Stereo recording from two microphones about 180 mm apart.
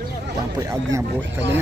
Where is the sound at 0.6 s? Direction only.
15° right (ahead or behind).